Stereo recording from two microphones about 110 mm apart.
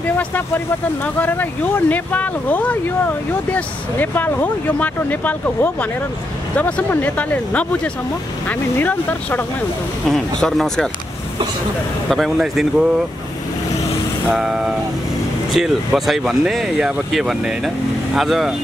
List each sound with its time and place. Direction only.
1.0 s speech: 15° left (ahead or behind)
10.0 s speech: 5° left (ahead or behind)
12.1 s speech: centre (ahead or behind)
14.3 s speech: 5° right (ahead or behind)